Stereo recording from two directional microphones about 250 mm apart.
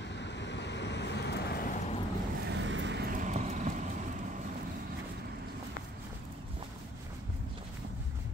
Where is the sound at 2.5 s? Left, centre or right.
Right.